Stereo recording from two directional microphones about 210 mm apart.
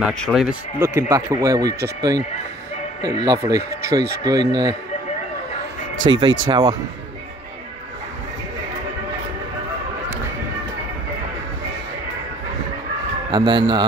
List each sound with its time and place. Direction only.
0.0 s speech: centre (ahead or behind)
0.7 s speech: 10° right (ahead or behind)
6.0 s speech: 20° right (ahead or behind)
13.3 s speech: 20° right (ahead or behind)